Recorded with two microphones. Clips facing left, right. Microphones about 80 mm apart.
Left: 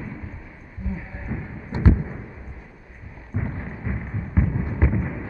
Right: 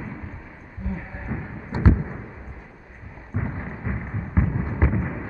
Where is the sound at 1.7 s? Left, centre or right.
Right.